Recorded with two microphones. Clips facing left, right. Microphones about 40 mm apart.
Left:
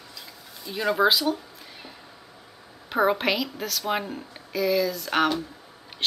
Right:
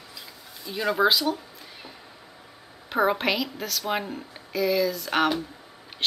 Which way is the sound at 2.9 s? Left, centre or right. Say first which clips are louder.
Left 1 dB; centre.